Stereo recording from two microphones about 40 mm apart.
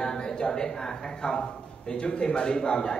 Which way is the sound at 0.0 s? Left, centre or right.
Centre.